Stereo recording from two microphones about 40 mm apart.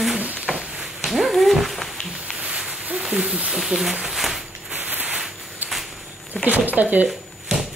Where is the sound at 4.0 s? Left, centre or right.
Centre.